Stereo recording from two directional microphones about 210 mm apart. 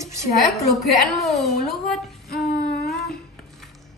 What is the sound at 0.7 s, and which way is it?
Speech, centre (ahead or behind).